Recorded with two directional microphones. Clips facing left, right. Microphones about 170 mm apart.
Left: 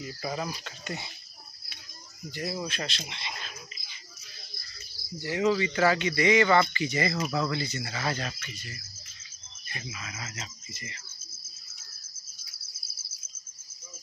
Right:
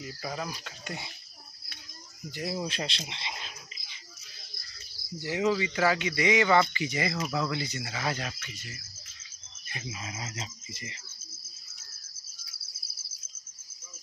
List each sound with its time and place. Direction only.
0.0 s speech: centre (ahead or behind)
2.3 s speech: 15° right (ahead or behind)
5.2 s speech: 15° right (ahead or behind)
7.0 s speech: centre (ahead or behind)
9.7 s speech: 25° right (ahead or behind)